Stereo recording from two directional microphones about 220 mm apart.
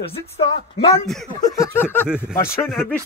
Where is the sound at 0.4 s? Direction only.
25° left (ahead or behind).